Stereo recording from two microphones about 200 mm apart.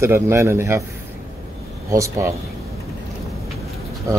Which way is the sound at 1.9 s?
15° right (ahead or behind).